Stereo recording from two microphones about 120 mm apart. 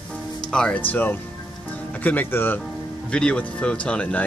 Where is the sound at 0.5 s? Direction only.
10° left (ahead or behind).